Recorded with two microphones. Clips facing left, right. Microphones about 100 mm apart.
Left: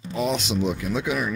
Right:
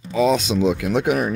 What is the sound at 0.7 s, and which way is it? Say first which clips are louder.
Speech: right 6 dB; 75° right (ahead or behind).